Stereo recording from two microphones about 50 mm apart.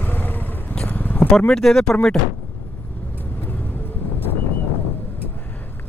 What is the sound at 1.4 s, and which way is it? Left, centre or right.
Speech, centre.